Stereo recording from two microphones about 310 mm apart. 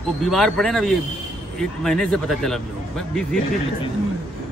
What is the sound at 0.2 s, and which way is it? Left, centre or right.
Speech, centre.